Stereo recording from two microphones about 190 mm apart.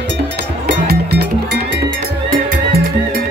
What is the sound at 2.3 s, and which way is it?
Music, 50° right (ahead or behind).